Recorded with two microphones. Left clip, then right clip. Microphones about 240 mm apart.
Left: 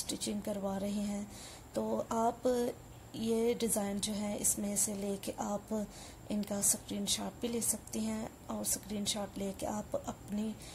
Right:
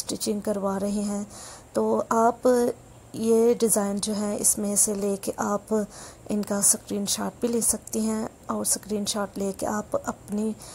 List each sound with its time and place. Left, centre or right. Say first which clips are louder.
0.0 s speech: right 11 dB; right